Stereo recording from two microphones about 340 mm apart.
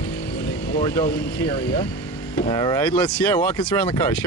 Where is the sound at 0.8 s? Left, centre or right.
Centre.